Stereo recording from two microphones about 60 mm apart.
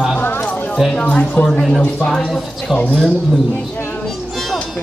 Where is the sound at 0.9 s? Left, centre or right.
Left.